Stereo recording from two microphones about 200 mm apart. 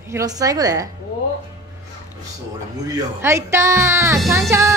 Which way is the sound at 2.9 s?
15° right (ahead or behind).